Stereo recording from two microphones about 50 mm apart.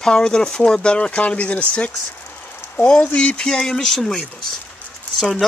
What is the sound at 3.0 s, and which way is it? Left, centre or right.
Speech, left.